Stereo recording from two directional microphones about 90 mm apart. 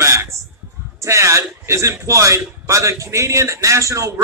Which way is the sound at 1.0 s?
35° right (ahead or behind).